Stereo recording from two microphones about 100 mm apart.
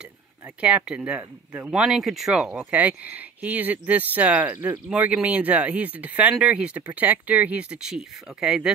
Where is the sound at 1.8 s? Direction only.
5° right (ahead or behind).